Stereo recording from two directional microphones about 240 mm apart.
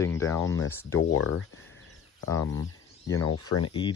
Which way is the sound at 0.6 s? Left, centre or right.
Left.